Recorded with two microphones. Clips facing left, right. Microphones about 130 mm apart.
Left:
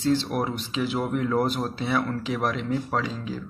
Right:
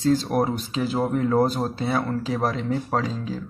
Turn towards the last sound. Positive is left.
turn(degrees=-35)  # may be behind; listen again after turning